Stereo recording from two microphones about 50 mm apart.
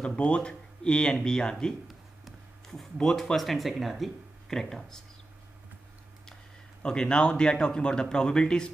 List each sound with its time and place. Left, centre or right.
0.0 s speech: left
6.8 s speech: centre